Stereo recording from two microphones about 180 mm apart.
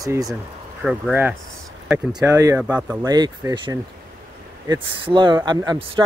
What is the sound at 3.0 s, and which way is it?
Speech, 20° right (ahead or behind).